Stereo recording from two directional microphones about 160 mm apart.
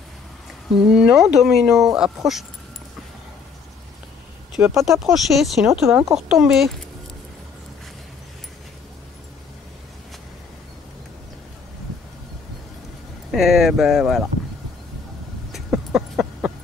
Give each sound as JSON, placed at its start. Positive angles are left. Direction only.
{"t": 0.9, "sound": "speech", "side_deg": -5}
{"t": 4.6, "sound": "speech", "side_deg": -5}
{"t": 5.7, "sound": "speech", "side_deg": -15}
{"t": 6.1, "sound": "speech", "side_deg": -5}
{"t": 13.3, "sound": "speech", "side_deg": 0}
{"t": 15.5, "sound": "a sound", "side_deg": 0}